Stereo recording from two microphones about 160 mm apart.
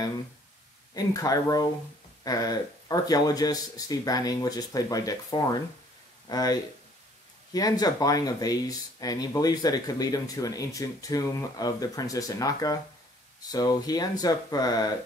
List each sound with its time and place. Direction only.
0.9 s speech: 20° left (ahead or behind)